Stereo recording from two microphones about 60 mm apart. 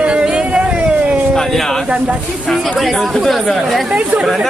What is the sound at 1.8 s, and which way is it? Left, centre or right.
Speech, centre.